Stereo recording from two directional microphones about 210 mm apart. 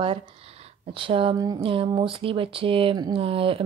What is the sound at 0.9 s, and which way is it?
Speech, 25° right (ahead or behind).